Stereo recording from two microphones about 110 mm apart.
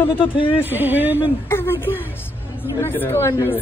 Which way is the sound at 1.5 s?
20° left (ahead or behind).